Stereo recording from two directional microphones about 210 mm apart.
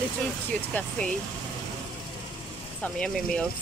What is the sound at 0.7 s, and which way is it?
Speech, 10° left (ahead or behind).